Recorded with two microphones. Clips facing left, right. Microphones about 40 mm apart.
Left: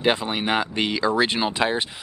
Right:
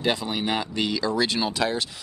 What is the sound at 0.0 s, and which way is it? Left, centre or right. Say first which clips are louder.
Speech: left 3 dB; left.